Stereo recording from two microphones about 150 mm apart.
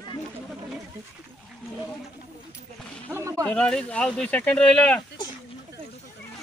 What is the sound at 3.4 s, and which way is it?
Speech, 5° left (ahead or behind).